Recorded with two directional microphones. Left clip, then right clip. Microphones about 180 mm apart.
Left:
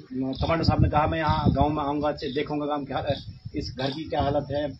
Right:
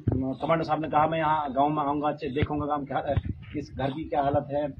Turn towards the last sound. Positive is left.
turn(degrees=15)  # may be behind; listen again after turning